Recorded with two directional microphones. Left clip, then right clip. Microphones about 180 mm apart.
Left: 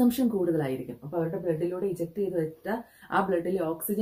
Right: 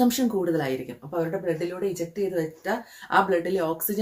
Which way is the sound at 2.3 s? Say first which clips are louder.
Right 3 dB; 10° right (ahead or behind).